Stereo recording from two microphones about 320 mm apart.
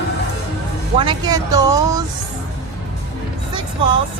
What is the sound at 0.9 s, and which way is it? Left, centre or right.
Speech, centre.